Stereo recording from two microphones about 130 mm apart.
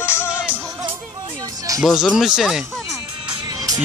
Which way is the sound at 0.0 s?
20° left (ahead or behind).